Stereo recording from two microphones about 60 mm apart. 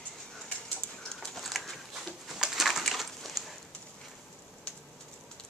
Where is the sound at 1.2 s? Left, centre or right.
Centre.